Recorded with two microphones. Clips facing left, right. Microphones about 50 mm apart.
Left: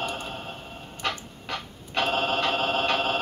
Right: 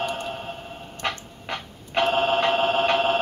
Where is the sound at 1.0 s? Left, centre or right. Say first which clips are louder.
Right 2 dB; right.